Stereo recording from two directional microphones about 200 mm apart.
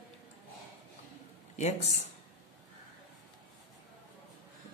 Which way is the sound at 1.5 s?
35° left (ahead or behind).